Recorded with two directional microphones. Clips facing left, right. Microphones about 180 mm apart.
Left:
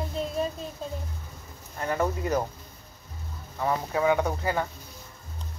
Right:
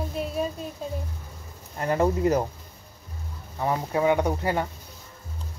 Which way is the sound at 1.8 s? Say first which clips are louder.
Right 5 dB; 30° right (ahead or behind).